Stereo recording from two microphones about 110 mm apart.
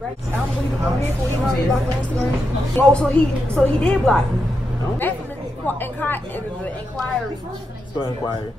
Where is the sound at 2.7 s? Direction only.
10° left (ahead or behind).